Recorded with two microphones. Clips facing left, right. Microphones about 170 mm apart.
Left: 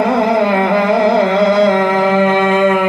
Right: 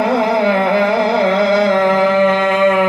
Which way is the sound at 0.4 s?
50° left (ahead or behind).